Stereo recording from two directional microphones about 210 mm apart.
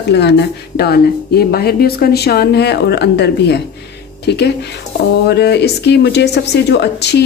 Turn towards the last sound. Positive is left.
turn(degrees=55)  # may be behind; listen again after turning